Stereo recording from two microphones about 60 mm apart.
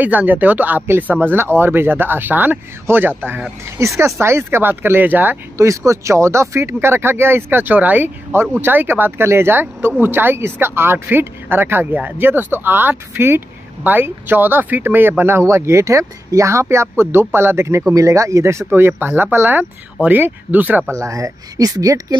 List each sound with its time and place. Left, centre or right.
0.0 s speech: right
4.0 s speech: right
5.6 s speech: right
6.8 s speech: right
7.6 s speech: right
17.9 s speech: right
18.7 s speech: right
20.9 s speech: right